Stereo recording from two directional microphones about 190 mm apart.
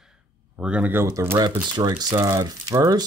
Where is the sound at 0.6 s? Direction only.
5° right (ahead or behind).